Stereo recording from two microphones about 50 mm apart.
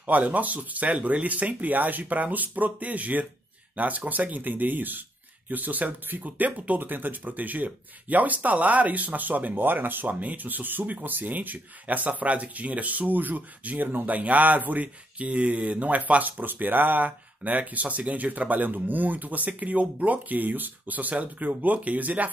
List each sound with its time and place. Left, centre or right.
0.0 s speech: right